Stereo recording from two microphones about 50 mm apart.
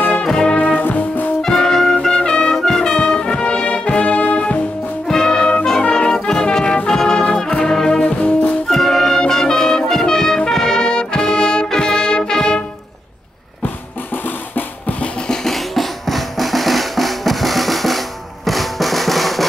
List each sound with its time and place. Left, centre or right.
0.2 s music: centre
0.6 s music: left
1.4 s brass instrument: centre; by 4.6 s left
5.0 s music: centre
5.7 s brass instrument: centre
8.6 s music: centre
14.5 s music: left
15.2 s drum: centre